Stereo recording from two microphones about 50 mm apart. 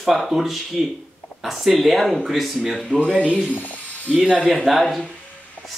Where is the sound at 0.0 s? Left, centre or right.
Centre.